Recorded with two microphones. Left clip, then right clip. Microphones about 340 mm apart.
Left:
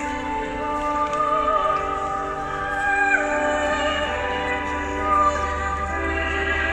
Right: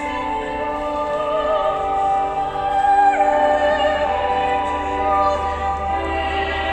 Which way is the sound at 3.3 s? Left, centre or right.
Centre.